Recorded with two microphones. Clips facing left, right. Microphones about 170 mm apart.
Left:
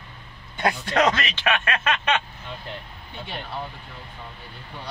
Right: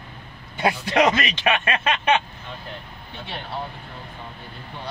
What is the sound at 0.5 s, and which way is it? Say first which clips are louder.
Speech: right 2 dB; 10° right (ahead or behind).